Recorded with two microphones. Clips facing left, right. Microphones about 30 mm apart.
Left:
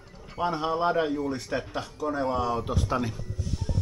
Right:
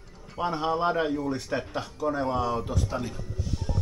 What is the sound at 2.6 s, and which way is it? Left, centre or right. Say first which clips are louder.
Speech: left 3 dB; centre.